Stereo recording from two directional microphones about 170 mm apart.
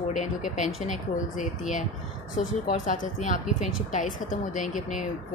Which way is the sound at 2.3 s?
50° left (ahead or behind).